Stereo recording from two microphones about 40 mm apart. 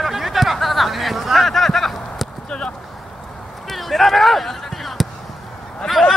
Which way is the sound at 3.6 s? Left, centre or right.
Centre.